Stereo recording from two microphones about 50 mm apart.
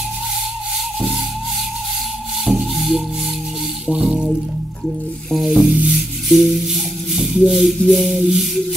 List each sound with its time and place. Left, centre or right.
2.4 s music: centre
4.8 s music: centre
5.7 s music: right
5.9 s music: centre